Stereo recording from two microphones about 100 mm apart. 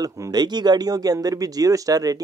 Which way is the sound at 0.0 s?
40° right (ahead or behind).